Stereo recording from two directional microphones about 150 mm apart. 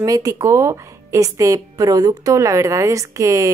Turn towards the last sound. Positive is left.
turn(degrees=-20)  # may be behind; listen again after turning